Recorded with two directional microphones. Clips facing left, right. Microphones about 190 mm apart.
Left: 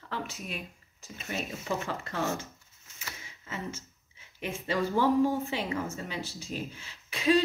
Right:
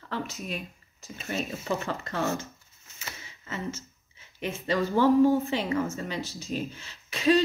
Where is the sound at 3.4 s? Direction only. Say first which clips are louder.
Right 3 dB; 10° left (ahead or behind).